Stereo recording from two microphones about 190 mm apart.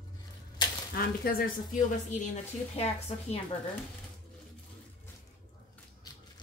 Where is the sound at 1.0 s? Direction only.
50° left (ahead or behind).